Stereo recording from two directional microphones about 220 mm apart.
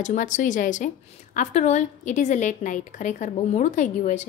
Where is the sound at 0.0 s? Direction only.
35° left (ahead or behind).